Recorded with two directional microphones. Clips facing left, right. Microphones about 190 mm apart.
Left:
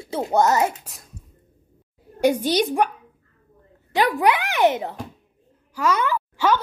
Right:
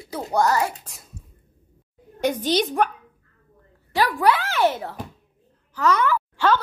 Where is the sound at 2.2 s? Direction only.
10° left (ahead or behind).